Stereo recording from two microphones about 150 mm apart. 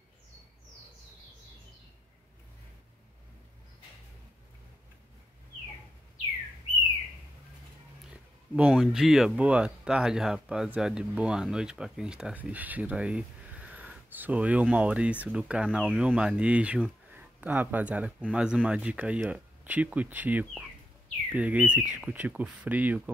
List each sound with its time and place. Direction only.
8.5 s speech: 5° right (ahead or behind)